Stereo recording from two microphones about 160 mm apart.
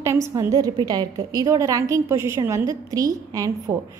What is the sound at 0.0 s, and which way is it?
A woman's voice, 20° right (ahead or behind).